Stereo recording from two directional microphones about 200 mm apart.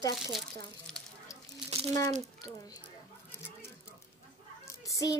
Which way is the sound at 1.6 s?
35° right (ahead or behind).